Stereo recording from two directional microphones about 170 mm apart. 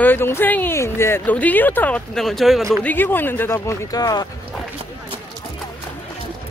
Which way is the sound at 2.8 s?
10° left (ahead or behind).